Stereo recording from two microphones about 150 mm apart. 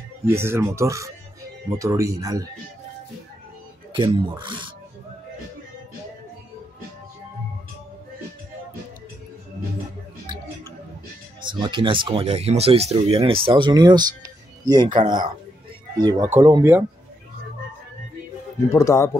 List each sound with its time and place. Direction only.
0.3 s speech: 15° right (ahead or behind)
3.9 s speech: 30° right (ahead or behind)
11.4 s speech: 30° right (ahead or behind)
18.7 s speech: 20° left (ahead or behind)